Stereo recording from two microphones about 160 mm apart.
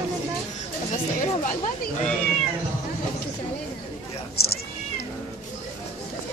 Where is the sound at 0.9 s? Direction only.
55° left (ahead or behind).